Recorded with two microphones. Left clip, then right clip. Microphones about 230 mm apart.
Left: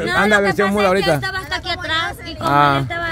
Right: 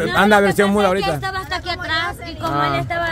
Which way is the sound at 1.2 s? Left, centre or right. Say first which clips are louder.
Left 1 dB; centre.